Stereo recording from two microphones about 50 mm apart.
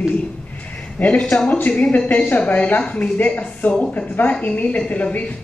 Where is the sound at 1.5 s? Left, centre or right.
Left.